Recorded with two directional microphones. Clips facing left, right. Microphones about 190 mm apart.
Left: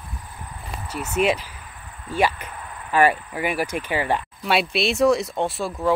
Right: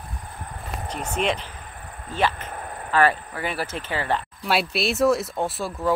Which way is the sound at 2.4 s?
45° right (ahead or behind).